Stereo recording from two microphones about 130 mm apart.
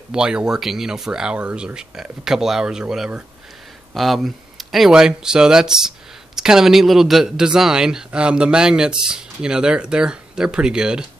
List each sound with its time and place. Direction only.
0.1 s speech: 5° right (ahead or behind)